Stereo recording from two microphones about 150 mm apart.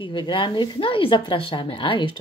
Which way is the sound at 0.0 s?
35° left (ahead or behind).